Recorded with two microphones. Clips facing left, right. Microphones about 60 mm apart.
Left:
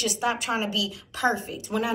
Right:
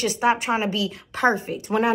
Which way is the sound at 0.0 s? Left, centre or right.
Right.